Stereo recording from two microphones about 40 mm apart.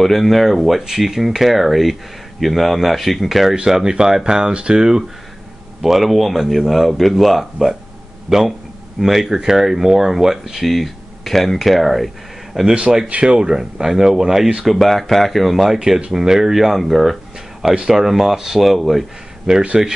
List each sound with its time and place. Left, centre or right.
0.0 s speech: centre
3.5 s speech: centre
5.8 s speech: centre
13.2 s speech: centre
14.6 s speech: centre
19.5 s speech: right